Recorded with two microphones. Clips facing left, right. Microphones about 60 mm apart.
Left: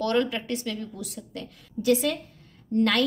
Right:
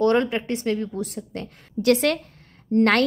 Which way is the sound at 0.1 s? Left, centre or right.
Right.